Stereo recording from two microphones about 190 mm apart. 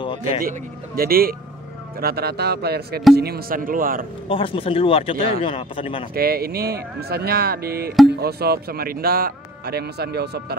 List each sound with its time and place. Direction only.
0.0 s a sound: 25° left (ahead or behind)
0.5 s speech: 50° right (ahead or behind)
4.3 s speech: 30° left (ahead or behind)
6.1 s speech: 55° right (ahead or behind)